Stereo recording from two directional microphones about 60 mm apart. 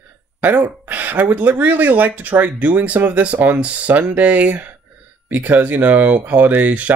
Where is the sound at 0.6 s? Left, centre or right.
Right.